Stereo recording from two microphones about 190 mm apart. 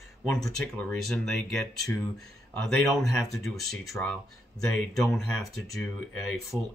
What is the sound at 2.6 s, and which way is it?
Speech, centre (ahead or behind).